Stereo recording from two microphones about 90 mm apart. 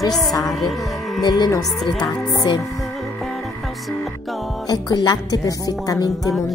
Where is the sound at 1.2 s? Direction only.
50° left (ahead or behind).